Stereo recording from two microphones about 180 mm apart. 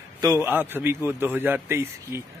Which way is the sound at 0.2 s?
15° right (ahead or behind).